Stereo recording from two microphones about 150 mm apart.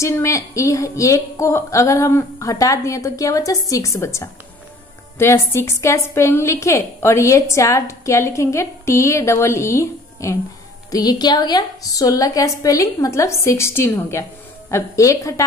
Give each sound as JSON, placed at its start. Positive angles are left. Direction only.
{"t": 0.0, "sound": "a woman's voice", "side_deg": 20}